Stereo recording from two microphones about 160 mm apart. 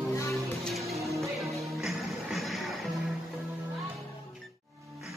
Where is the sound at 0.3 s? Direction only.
Centre (ahead or behind).